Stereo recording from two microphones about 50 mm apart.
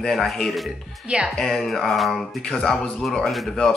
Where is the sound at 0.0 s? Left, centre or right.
Centre.